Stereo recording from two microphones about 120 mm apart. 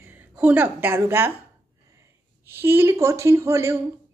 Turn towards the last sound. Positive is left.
turn(degrees=-25)  # may be behind; listen again after turning